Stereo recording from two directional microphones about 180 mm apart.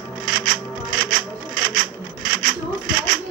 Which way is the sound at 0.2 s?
50° right (ahead or behind).